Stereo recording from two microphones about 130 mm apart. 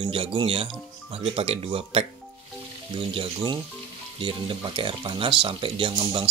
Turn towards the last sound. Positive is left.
turn(degrees=-40)  # may be behind; listen again after turning